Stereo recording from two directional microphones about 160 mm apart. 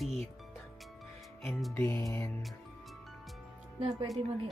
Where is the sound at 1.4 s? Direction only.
Centre (ahead or behind).